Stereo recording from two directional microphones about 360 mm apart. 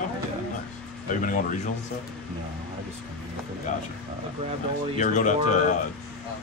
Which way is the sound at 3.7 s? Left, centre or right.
Centre.